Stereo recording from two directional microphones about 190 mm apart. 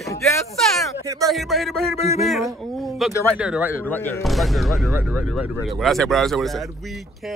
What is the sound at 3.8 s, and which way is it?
Speech, 10° left (ahead or behind).